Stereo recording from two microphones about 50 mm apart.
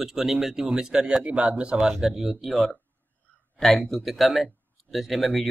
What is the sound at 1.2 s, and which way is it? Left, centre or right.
Speech, right.